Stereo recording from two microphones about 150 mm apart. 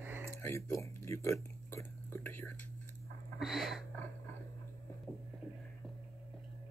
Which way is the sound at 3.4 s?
Centre (ahead or behind).